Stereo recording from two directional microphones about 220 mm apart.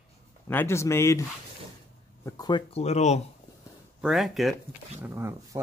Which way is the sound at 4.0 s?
Centre (ahead or behind).